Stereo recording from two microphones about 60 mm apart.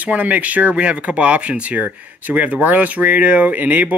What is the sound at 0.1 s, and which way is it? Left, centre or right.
Speech, right.